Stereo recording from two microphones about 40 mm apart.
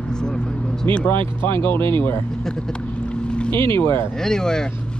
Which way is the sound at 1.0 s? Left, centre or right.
Left.